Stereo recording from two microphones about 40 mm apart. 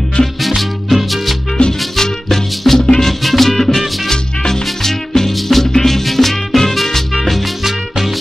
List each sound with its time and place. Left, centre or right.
0.2 s music: left
0.6 s music: centre
4.1 s music: centre